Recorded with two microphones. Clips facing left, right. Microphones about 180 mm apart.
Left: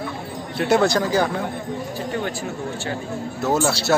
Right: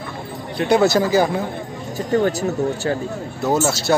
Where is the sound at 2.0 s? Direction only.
40° right (ahead or behind).